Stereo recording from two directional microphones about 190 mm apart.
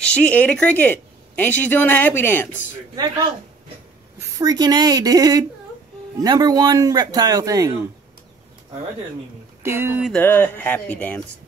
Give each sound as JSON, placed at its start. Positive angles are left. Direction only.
{"t": 0.0, "sound": "speech", "side_deg": 5}
{"t": 4.4, "sound": "a man's voice", "side_deg": -20}
{"t": 9.6, "sound": "speech", "side_deg": -10}
{"t": 10.1, "sound": "speech", "side_deg": 10}